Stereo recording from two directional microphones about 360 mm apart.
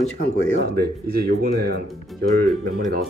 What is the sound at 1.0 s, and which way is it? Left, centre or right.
Speech, right.